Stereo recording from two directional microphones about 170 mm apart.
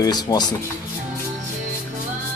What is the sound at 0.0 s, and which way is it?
Speech, 25° left (ahead or behind).